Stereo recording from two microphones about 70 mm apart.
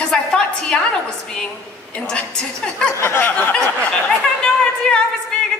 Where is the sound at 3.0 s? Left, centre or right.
Left.